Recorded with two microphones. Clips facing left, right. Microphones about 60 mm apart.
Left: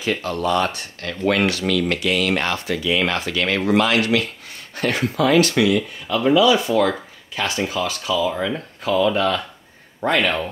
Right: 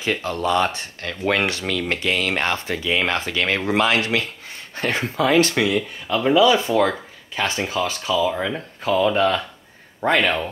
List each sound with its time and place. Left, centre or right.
0.0 s speech: right